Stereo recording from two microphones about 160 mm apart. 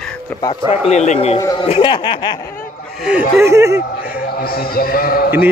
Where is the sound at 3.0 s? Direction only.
5° right (ahead or behind).